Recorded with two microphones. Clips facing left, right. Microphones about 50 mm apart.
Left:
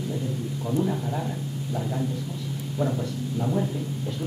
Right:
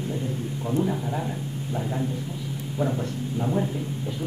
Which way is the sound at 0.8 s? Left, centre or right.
Centre.